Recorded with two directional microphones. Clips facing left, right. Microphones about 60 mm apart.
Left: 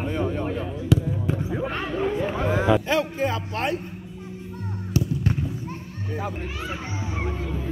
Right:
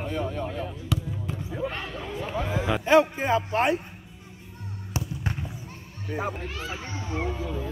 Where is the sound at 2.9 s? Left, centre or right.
Right.